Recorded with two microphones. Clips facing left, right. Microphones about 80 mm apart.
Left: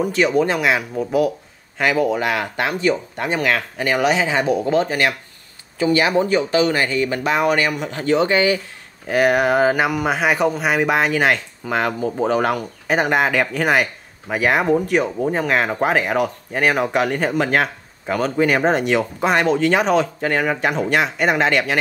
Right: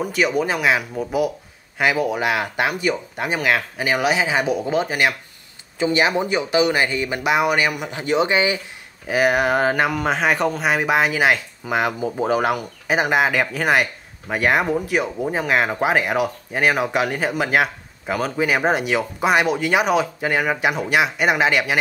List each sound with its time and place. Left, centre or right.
0.0 s speech: centre
5.8 s speech: right
9.0 s speech: centre